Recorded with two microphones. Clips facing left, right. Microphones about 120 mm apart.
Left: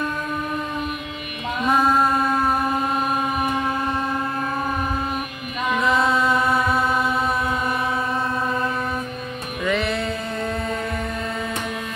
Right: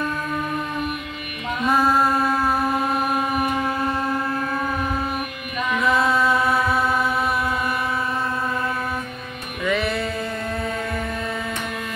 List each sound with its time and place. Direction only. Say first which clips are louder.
1.7 s mantra: even; 5° right (ahead or behind)
2.3 s chant: left 1 dB; 20° left (ahead or behind)
6.3 s chant: even; centre (ahead or behind)
9.7 s music: even; centre (ahead or behind)